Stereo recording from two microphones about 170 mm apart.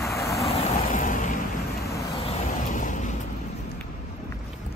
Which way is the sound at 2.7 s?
50° left (ahead or behind).